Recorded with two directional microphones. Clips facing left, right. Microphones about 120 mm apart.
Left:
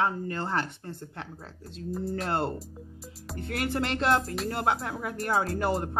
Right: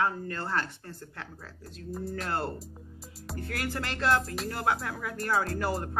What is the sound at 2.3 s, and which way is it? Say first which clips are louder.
Speech: left 2 dB; 25° left (ahead or behind).